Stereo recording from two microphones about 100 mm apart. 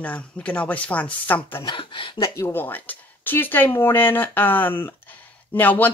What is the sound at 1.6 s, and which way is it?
Speech, 50° left (ahead or behind).